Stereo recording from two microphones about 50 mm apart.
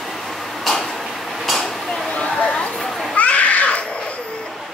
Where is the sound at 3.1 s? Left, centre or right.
Left.